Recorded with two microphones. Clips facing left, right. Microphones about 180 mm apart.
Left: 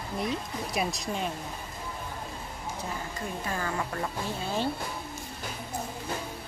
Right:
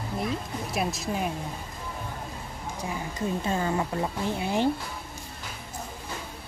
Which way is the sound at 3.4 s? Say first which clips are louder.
Right 3 dB; 25° right (ahead or behind).